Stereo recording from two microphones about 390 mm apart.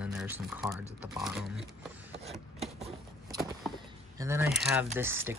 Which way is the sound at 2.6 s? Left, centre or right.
Centre.